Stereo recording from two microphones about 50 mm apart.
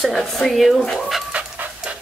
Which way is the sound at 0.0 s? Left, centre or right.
Centre.